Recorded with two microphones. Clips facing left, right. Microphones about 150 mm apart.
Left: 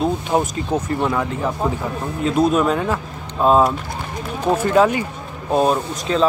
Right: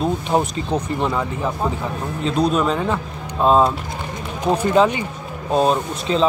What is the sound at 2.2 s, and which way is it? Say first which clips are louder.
Speech: left 2 dB; 5° left (ahead or behind).